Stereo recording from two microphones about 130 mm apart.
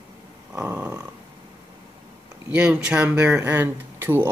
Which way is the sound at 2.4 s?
10° right (ahead or behind).